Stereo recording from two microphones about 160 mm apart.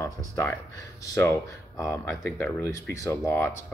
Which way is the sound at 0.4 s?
20° left (ahead or behind).